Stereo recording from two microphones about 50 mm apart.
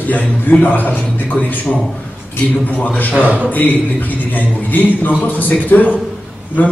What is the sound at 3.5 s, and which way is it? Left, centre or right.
A man's voice, left.